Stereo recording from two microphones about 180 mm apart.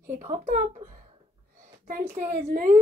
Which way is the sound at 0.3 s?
40° right (ahead or behind).